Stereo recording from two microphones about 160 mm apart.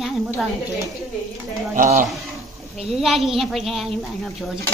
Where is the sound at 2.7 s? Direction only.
Centre (ahead or behind).